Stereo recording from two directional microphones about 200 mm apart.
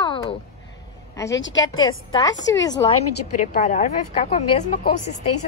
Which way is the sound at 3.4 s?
40° left (ahead or behind).